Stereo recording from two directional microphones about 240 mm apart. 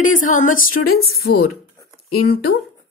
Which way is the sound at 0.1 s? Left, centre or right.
Left.